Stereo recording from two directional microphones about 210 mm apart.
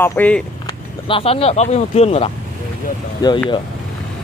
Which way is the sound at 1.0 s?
25° left (ahead or behind).